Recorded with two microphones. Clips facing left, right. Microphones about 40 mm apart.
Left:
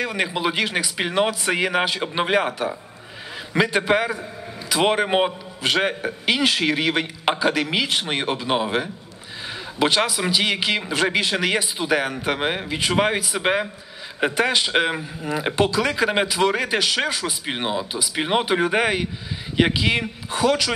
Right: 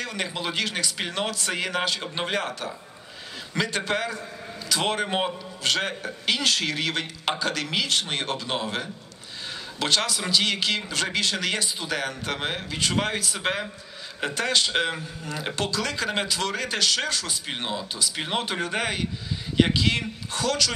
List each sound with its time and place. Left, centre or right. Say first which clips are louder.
0.0 s a man's voice: left 7 dB; centre